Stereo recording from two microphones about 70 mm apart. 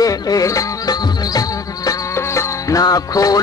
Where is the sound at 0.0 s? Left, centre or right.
Left.